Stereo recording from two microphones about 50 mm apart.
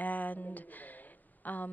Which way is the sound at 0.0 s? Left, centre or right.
Left.